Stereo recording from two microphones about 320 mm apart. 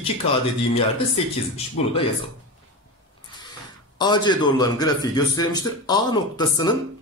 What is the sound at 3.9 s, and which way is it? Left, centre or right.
A man's voice, centre.